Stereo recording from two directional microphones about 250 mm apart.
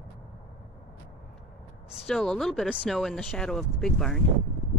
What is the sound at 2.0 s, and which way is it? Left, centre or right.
Speech, centre.